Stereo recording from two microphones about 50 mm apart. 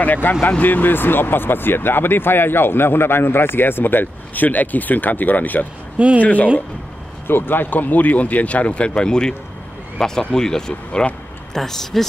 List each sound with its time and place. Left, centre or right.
0.0 s speech: left
5.9 s speech: right
6.2 s speech: left
7.2 s speech: left; by 12.1 s centre